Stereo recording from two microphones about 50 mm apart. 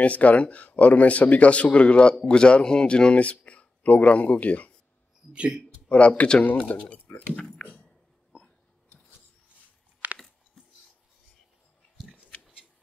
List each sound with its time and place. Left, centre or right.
0.0 s speech: left
5.3 s speech: right
5.9 s speech: left
6.7 s speech: left
7.6 s a sound: left
10.1 s a sound: centre